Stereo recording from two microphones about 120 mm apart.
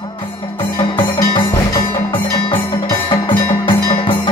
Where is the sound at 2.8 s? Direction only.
40° left (ahead or behind).